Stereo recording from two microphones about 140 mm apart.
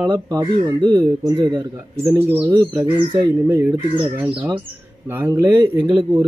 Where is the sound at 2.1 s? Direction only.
10° right (ahead or behind).